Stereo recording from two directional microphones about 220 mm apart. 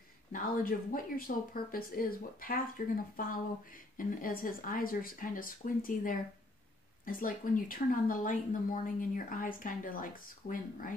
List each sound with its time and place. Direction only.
0.3 s a woman's voice: 40° left (ahead or behind)